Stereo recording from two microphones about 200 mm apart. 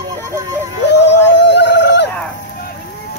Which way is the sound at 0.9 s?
60° left (ahead or behind).